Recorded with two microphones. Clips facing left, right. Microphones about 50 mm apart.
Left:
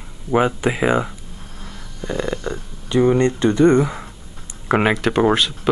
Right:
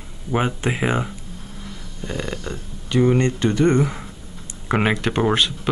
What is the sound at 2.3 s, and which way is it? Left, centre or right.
Speech, centre.